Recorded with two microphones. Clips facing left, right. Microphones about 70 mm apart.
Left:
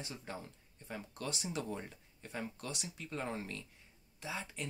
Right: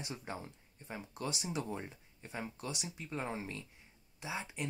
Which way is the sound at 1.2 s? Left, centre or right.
Centre.